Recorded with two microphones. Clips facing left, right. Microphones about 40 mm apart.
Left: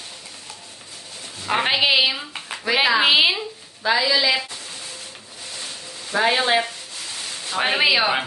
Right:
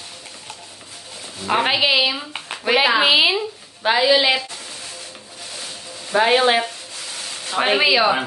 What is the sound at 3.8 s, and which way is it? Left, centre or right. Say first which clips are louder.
Speech: right 3 dB; right.